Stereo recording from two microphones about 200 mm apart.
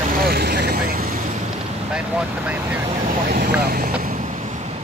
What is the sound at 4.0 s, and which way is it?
Waves, 40° right (ahead or behind).